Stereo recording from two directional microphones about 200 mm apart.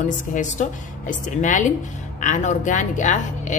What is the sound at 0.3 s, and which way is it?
A woman's voice, 40° left (ahead or behind).